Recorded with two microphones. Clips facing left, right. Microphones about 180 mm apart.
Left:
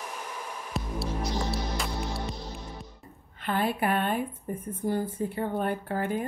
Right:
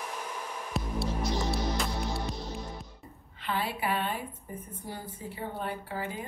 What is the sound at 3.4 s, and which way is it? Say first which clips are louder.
Speech: left 5 dB; 50° left (ahead or behind).